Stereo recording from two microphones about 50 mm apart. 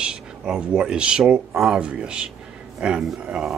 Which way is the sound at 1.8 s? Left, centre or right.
Right.